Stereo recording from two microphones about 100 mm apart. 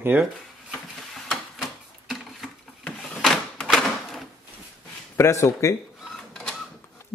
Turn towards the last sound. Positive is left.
turn(degrees=5)  # may be behind; listen again after turning